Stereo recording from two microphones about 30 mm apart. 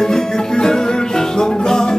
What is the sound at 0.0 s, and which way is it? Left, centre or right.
Music, centre.